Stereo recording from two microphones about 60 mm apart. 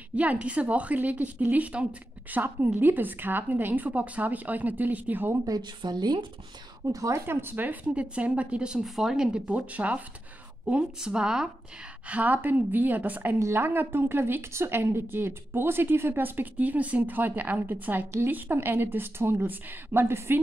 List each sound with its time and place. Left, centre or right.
0.1 s a woman's voice: right
2.4 s a woman's voice: right
6.9 s a woman's voice: right
7.2 s a woman's voice: right; by 8.8 s centre
8.8 s a woman's voice: centre
9.5 s a woman's voice: right
12.1 s a woman's voice: right